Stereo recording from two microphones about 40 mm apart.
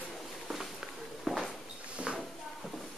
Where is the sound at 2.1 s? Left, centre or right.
Right.